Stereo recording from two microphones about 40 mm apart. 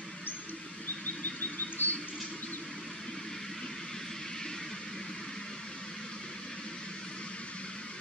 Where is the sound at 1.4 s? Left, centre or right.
Left.